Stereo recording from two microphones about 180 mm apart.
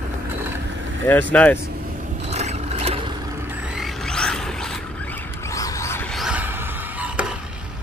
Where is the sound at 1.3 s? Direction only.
10° left (ahead or behind).